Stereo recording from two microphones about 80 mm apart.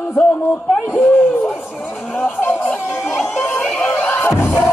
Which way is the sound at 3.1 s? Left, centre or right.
Left.